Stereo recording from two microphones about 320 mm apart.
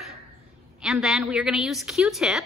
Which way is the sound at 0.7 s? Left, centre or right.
Centre.